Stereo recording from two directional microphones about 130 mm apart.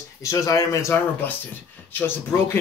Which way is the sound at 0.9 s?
15° left (ahead or behind).